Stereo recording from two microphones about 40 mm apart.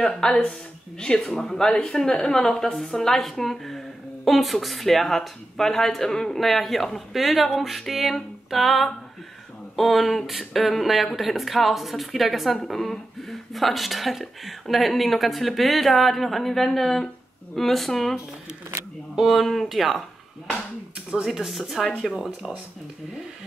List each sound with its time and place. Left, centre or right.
0.0 s a woman's voice: centre
2.0 s a woman's voice: left
2.3 s a woman's voice: centre
19.1 s a woman's voice: centre
21.1 s a woman's voice: centre